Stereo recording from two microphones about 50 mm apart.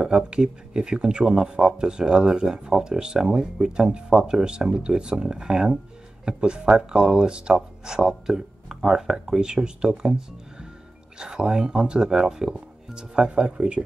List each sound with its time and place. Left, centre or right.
0.0 s speech: centre